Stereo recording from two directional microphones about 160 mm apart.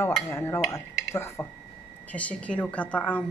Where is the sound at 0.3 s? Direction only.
15° left (ahead or behind).